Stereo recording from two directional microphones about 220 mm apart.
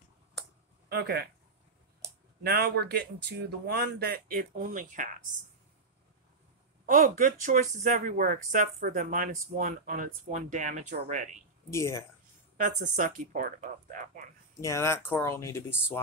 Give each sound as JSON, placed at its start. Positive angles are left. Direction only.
{"t": 0.8, "sound": "a sound", "side_deg": -45}
{"t": 2.4, "sound": "speech", "side_deg": -45}
{"t": 6.9, "sound": "speech", "side_deg": -40}
{"t": 11.7, "sound": "speech", "side_deg": 15}
{"t": 12.5, "sound": "speech", "side_deg": -35}
{"t": 14.6, "sound": "speech", "side_deg": 15}